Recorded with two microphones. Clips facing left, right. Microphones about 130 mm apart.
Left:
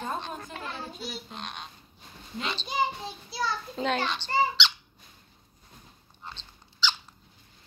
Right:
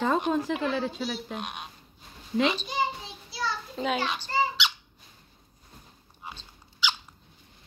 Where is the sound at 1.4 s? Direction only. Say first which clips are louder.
Right 3 dB; 10° right (ahead or behind).